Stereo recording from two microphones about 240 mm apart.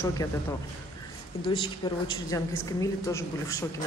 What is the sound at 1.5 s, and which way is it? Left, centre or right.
Speech, left.